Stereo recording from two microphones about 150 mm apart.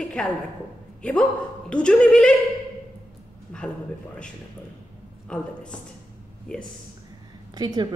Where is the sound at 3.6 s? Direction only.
5° left (ahead or behind).